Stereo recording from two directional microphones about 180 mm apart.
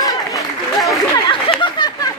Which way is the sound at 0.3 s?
Centre (ahead or behind).